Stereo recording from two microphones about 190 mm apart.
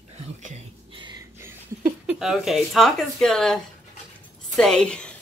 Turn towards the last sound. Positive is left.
turn(degrees=5)  # may be behind; listen again after turning